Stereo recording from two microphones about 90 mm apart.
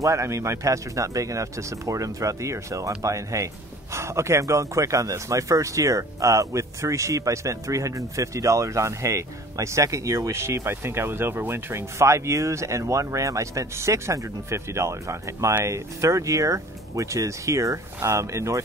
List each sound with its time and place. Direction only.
0.0 s speech: 35° right (ahead or behind)